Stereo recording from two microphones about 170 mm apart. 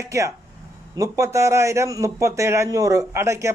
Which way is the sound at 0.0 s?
15° right (ahead or behind).